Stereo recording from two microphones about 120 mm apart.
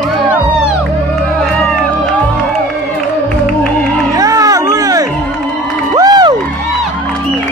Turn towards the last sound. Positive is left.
turn(degrees=-30)  # may be behind; listen again after turning